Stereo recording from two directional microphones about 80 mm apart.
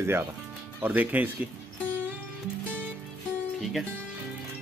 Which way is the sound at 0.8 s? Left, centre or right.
Centre.